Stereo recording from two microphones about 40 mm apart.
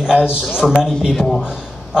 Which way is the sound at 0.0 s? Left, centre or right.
Right.